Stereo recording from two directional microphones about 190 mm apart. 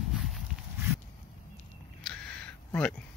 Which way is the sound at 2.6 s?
5° left (ahead or behind).